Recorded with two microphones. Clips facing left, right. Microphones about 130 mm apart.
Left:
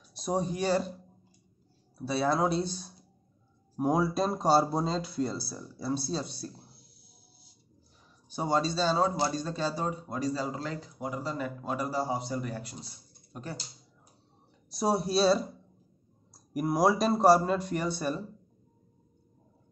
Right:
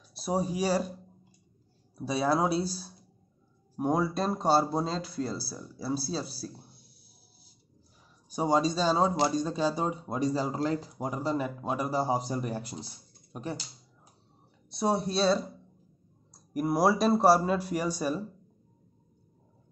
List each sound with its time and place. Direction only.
0.1 s speech: 5° right (ahead or behind)
2.0 s speech: 10° right (ahead or behind)
3.7 s speech: centre (ahead or behind)
8.3 s speech: 10° right (ahead or behind); by 11.3 s 30° right (ahead or behind)
11.3 s speech: 20° right (ahead or behind)
13.3 s speech: 20° right (ahead or behind)
14.7 s speech: centre (ahead or behind)